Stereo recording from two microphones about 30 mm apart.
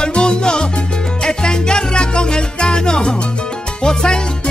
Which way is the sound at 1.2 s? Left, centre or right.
Left.